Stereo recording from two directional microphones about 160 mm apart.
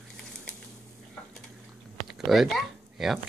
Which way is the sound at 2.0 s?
Centre (ahead or behind).